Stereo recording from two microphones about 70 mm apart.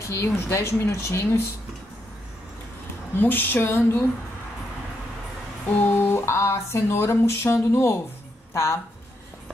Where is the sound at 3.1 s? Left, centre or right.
Left.